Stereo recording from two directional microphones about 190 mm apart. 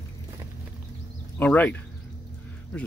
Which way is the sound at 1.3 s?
10° left (ahead or behind).